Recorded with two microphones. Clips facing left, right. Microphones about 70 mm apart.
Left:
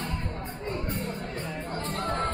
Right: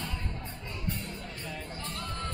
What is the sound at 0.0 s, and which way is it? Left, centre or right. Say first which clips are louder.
Music: left 5 dB; left.